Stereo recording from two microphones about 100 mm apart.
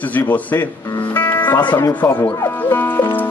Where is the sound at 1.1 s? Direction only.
20° left (ahead or behind).